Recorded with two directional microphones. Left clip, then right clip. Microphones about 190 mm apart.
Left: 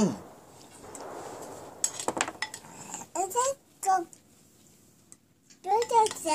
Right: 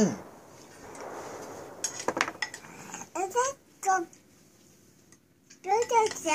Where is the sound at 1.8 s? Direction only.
30° left (ahead or behind).